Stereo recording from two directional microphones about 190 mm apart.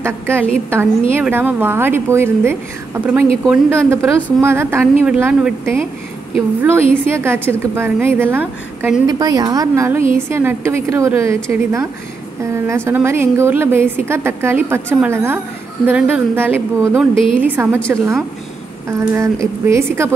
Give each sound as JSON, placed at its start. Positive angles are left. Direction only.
{"t": 0.0, "sound": "a woman's voice", "side_deg": -10}
{"t": 9.0, "sound": "a woman's voice", "side_deg": -20}
{"t": 12.6, "sound": "a woman's voice", "side_deg": -15}
{"t": 17.1, "sound": "a woman's voice", "side_deg": 25}
{"t": 17.4, "sound": "a woman's voice", "side_deg": -10}